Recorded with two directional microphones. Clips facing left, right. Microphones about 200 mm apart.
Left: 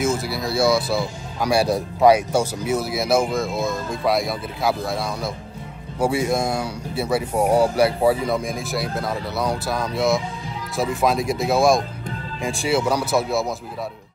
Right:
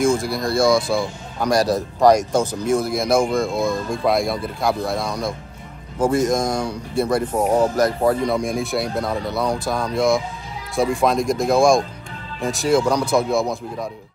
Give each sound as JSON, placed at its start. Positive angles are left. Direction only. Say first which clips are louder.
{"t": 0.0, "sound": "speech", "louder": "right 4 dB", "side_deg": 5}